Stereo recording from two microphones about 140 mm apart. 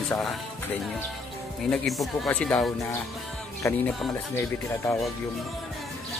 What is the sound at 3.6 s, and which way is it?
Music, 20° left (ahead or behind).